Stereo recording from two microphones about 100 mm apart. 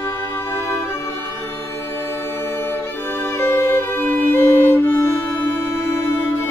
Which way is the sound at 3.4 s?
25° left (ahead or behind).